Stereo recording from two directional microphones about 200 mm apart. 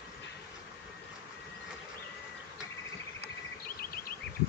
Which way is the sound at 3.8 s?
50° left (ahead or behind).